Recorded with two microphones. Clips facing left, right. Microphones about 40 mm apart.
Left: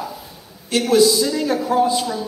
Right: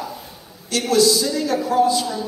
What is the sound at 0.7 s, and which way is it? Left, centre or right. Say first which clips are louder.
A man's voice: left 2 dB; left.